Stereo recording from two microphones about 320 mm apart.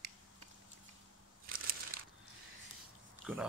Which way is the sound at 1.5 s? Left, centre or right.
Right.